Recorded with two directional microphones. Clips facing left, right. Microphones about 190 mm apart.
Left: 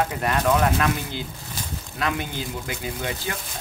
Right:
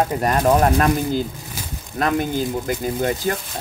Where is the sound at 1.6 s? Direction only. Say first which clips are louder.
Left 1 dB; 5° right (ahead or behind).